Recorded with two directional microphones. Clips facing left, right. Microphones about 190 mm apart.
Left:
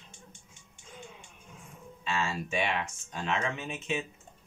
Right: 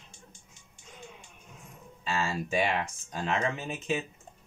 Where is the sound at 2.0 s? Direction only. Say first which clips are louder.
Right 1 dB; 35° right (ahead or behind).